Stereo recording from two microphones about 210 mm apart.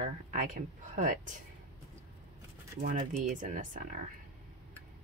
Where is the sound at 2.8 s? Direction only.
40° right (ahead or behind).